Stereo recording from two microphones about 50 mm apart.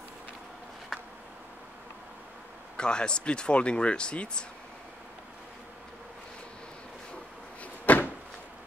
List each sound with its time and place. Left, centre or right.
2.8 s speech: centre
7.8 s door: left